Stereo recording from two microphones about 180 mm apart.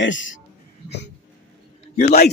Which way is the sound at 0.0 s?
90° left.